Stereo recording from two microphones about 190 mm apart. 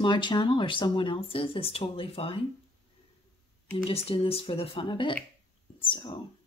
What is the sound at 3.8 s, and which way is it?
A woman's voice, 30° left (ahead or behind).